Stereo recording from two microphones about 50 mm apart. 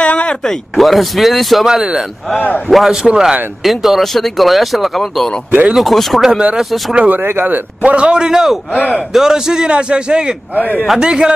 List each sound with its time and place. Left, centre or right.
0.0 s a sound: left
0.4 s speech: centre
2.3 s speech: left
2.7 s a man's voice: centre
7.1 s speech: right
7.8 s a man's voice: right
8.7 s speech: left
9.1 s a man's voice: centre
10.5 s speech: left
11.0 s a man's voice: centre